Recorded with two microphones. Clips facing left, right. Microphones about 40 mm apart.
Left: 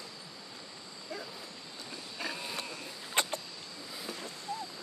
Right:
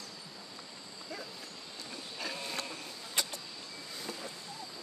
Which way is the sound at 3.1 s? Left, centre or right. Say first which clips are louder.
Left 5 dB; left.